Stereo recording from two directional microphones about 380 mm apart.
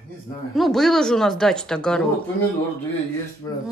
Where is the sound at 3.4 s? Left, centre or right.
Centre.